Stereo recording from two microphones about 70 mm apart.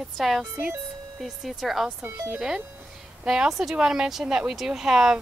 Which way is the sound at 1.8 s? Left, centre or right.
Right.